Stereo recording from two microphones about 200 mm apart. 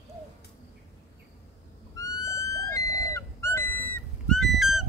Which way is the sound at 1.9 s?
15° left (ahead or behind).